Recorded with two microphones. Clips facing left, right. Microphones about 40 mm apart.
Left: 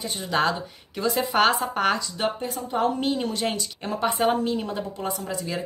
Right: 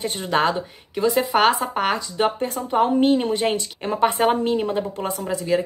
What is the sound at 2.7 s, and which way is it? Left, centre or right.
A woman's voice, right.